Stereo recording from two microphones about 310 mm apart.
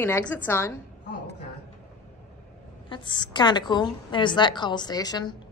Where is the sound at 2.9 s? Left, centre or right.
Centre.